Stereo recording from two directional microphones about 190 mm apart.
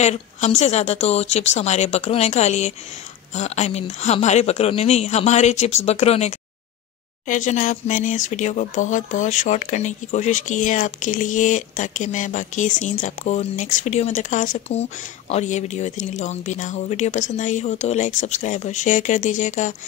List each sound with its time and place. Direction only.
0.0 s speech: 35° left (ahead or behind)